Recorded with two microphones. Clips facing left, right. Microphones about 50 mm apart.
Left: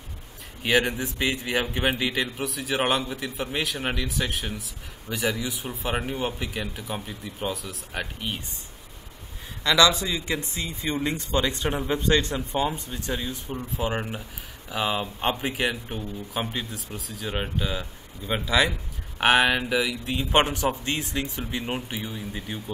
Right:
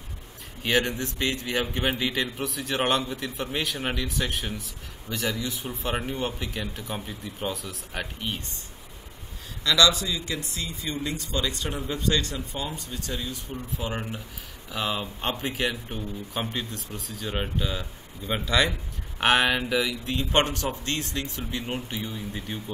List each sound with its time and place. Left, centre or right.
0.7 s a man's voice: centre
5.1 s a man's voice: centre
9.6 s speech: left; by 22.6 s centre